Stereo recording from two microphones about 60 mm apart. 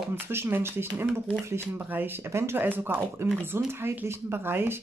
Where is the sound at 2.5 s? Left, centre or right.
Right.